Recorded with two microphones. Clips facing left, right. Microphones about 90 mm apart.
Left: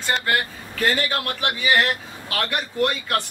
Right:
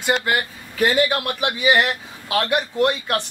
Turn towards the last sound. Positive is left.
turn(degrees=-20)  # may be behind; listen again after turning